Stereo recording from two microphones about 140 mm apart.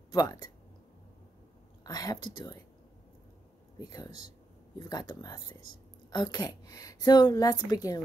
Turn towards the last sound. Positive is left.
turn(degrees=25)  # may be behind; listen again after turning